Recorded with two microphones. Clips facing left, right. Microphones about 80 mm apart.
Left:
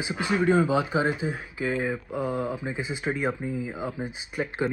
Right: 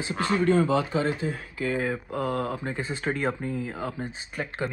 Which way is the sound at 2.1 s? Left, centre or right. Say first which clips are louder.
Right 1 dB; right.